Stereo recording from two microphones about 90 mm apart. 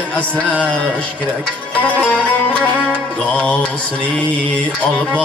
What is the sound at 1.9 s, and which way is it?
Music, 15° left (ahead or behind).